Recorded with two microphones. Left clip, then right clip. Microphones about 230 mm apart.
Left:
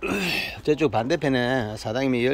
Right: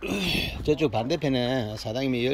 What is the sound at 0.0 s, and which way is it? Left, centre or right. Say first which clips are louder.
Speech: left 2 dB; centre.